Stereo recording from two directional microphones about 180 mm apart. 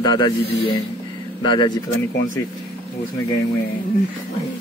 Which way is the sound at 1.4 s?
25° left (ahead or behind).